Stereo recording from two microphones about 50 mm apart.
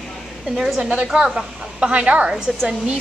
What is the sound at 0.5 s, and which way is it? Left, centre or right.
Speech, centre.